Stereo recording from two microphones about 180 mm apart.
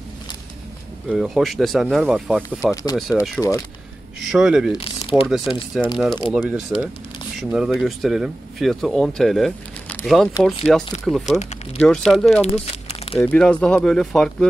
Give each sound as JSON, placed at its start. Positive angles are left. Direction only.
{"t": 1.0, "sound": "speech", "side_deg": -5}
{"t": 2.6, "sound": "speech", "side_deg": 20}
{"t": 3.0, "sound": "speech", "side_deg": 0}
{"t": 3.3, "sound": "speech", "side_deg": 20}
{"t": 4.3, "sound": "speech", "side_deg": -5}
{"t": 4.7, "sound": "speech", "side_deg": 30}
{"t": 5.3, "sound": "speech", "side_deg": 0}
{"t": 12.8, "sound": "a sound", "side_deg": 30}
{"t": 13.2, "sound": "speech", "side_deg": 10}